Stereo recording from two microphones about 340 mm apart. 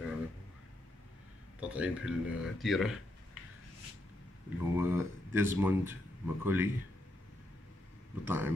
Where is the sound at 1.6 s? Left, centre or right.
Centre.